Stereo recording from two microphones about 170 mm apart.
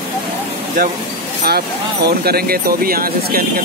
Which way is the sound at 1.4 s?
70° right (ahead or behind).